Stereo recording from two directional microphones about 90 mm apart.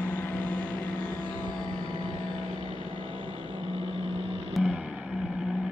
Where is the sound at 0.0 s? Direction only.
20° left (ahead or behind).